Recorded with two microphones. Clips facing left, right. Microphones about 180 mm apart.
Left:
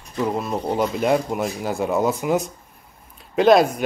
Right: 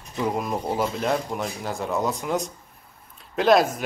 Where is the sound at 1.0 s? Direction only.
5° left (ahead or behind).